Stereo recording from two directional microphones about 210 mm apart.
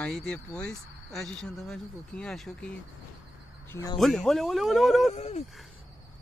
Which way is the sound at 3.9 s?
Centre (ahead or behind).